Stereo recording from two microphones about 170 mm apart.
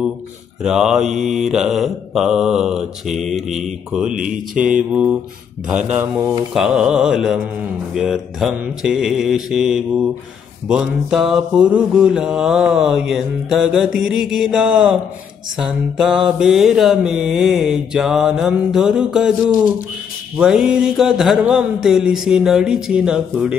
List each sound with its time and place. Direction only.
0.6 s mantra: 5° right (ahead or behind)
4.6 s mantra: 5° right (ahead or behind)